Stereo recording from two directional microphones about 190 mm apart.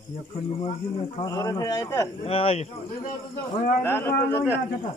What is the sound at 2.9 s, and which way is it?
Speech, 45° left (ahead or behind).